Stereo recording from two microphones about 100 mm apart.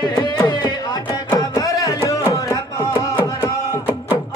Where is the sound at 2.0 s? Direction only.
35° left (ahead or behind).